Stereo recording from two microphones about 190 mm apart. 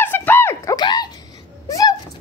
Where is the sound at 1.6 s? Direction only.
15° left (ahead or behind).